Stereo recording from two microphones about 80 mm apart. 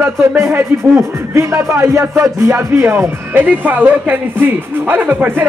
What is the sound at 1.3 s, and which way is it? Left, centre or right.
Speech, right.